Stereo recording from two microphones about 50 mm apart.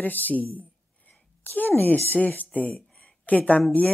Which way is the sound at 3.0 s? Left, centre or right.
Left.